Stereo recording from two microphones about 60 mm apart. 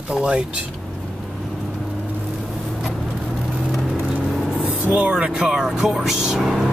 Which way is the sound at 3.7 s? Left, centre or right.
Centre.